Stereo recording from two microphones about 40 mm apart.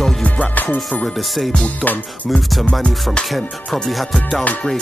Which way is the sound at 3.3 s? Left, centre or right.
Centre.